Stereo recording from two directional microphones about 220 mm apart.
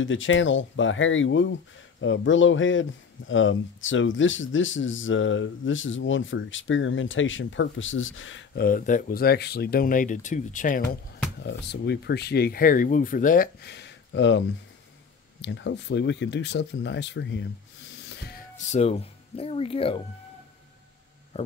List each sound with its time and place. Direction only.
0.0 s speech: 60° left (ahead or behind)
8.5 s speech: 40° left (ahead or behind)
10.8 s speech: 50° left (ahead or behind)
15.4 s speech: 55° left (ahead or behind)
17.9 s a sound: 50° left (ahead or behind)
18.6 s speech: 30° left (ahead or behind)